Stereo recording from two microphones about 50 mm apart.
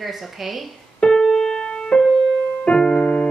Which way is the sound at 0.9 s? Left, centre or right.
Centre.